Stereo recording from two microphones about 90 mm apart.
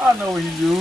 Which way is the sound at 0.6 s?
Centre (ahead or behind).